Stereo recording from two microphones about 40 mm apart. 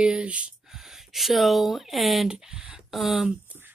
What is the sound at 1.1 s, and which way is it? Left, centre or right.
Speech, centre.